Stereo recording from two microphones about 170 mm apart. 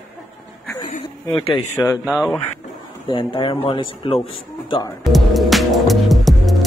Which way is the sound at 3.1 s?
30° left (ahead or behind).